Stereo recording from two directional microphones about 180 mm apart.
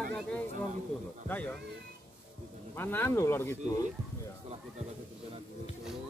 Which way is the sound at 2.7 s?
10° left (ahead or behind).